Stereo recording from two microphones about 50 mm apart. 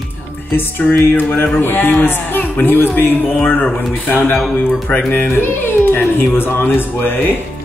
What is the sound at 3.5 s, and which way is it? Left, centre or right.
Speech, left.